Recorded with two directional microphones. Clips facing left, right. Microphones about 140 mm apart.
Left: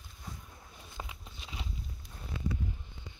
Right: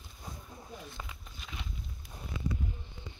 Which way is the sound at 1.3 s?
30° left (ahead or behind).